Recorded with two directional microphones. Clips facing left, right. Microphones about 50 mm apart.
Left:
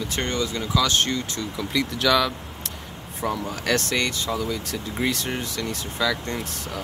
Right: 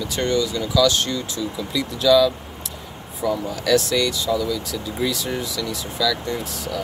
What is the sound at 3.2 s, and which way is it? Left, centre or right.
Speech, left.